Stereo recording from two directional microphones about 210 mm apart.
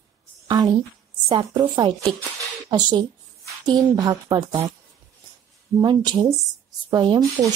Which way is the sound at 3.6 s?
20° right (ahead or behind).